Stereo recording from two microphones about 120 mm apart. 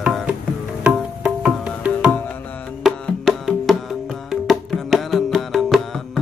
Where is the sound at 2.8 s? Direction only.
Centre (ahead or behind).